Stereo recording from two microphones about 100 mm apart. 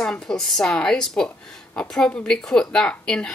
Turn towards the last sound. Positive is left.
turn(degrees=5)  # may be behind; listen again after turning